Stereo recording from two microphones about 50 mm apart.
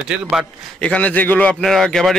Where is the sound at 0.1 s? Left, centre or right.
Centre.